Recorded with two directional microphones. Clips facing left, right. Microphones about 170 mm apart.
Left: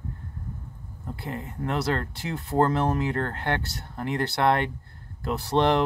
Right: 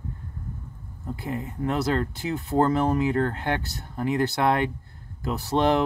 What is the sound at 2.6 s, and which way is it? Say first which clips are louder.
Speech: right 1 dB; 10° right (ahead or behind).